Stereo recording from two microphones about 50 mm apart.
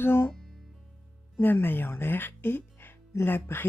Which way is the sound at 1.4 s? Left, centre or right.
Left.